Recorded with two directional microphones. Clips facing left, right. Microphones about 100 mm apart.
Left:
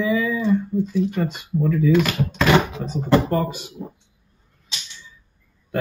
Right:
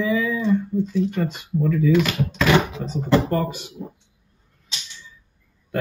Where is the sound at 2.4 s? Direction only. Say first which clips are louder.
Left 1 dB; 35° left (ahead or behind).